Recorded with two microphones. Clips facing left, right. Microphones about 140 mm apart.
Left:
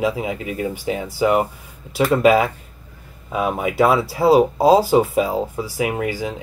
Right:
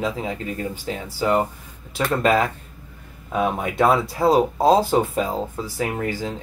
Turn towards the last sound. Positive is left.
turn(degrees=15)  # may be behind; listen again after turning